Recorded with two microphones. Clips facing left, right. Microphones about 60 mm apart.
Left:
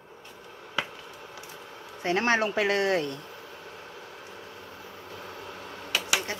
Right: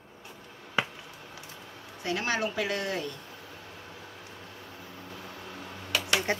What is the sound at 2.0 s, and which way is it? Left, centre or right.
Speech, left.